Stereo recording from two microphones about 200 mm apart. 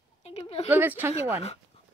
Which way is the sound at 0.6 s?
10° right (ahead or behind).